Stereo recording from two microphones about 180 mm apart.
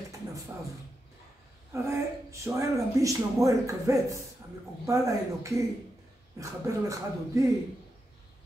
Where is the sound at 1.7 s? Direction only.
15° right (ahead or behind).